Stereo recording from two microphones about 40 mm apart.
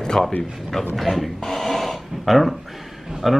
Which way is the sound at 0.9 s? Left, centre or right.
Centre.